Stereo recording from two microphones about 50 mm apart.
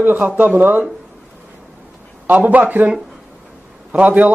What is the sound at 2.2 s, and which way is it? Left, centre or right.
Speech, right.